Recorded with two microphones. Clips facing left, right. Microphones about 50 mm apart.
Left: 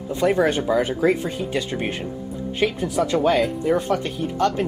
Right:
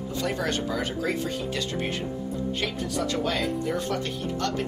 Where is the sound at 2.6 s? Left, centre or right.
Centre.